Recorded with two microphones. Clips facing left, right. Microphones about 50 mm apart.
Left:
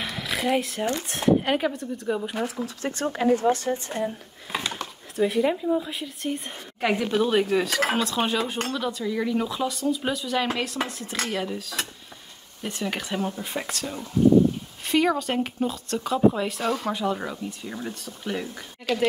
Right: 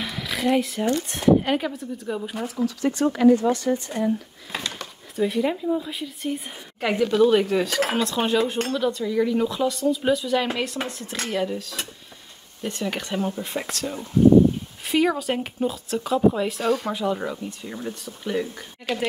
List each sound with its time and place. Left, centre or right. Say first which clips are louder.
0.0 s a sound: right 2 dB; centre
1.4 s speech: even; centre
2.5 s speech: right 6 dB; left
3.1 s speech: right 5 dB; left
3.5 s speech: right 3 dB; left
4.0 s a sound: right 5 dB; centre
5.2 s speech: even; centre
18.9 s speech: left 1 dB; centre